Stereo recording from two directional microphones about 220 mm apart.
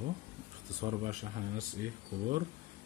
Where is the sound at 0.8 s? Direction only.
30° right (ahead or behind).